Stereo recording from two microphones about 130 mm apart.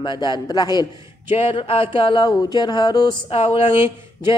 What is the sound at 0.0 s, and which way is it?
Speech, 35° left (ahead or behind).